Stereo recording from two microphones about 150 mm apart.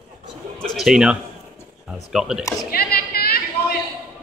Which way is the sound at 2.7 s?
90° left.